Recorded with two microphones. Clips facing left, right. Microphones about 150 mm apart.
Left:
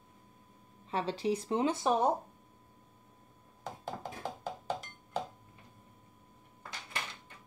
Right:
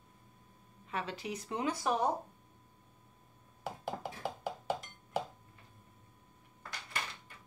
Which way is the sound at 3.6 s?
10° right (ahead or behind).